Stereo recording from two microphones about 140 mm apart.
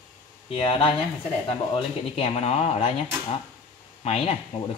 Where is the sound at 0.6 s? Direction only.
40° left (ahead or behind).